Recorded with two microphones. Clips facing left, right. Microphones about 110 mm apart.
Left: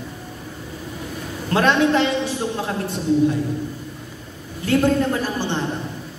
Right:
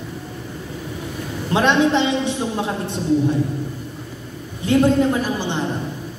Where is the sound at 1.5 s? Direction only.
20° right (ahead or behind).